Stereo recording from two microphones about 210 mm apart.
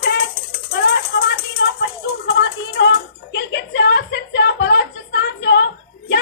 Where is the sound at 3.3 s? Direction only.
55° left (ahead or behind).